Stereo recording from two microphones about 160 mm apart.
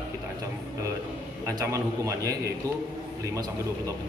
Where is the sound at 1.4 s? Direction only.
20° right (ahead or behind).